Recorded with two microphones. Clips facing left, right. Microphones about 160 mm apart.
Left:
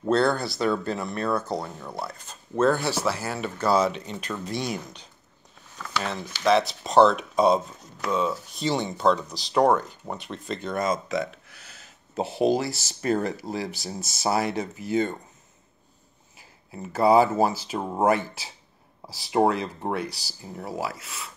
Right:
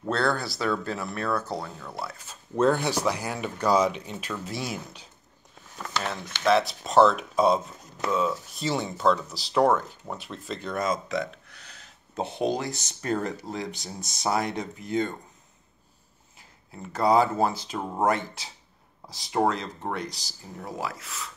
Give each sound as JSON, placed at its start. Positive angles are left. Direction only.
{"t": 0.1, "sound": "speech", "side_deg": 0}
{"t": 1.6, "sound": "speech", "side_deg": 20}
{"t": 2.0, "sound": "speech", "side_deg": -5}
{"t": 6.4, "sound": "speech", "side_deg": 0}
{"t": 16.3, "sound": "speech", "side_deg": 5}